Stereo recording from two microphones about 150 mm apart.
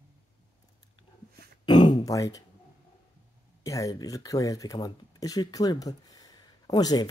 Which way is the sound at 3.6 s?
20° left (ahead or behind).